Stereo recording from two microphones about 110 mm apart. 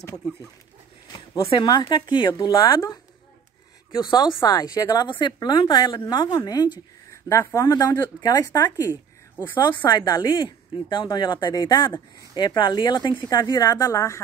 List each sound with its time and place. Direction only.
1.4 s a woman's voice: 55° left (ahead or behind)
1.7 s speech: 40° left (ahead or behind)
2.3 s speech: 30° left (ahead or behind)
3.9 s a woman's voice: 40° left (ahead or behind)
7.1 s speech: 25° left (ahead or behind)